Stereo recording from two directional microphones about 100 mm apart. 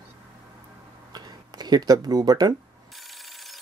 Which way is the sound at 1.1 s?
45° right (ahead or behind).